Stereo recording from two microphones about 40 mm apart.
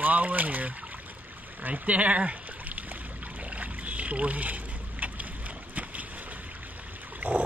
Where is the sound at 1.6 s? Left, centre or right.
Right.